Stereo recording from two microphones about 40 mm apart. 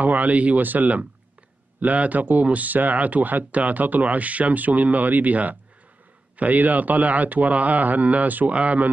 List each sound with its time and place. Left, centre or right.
0.0 s a man's voice: right